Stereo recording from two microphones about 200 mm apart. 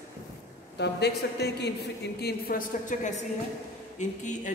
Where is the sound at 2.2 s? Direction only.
45° left (ahead or behind).